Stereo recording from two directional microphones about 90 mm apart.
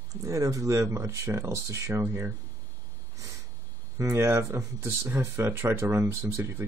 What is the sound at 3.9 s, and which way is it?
Speech, 30° right (ahead or behind).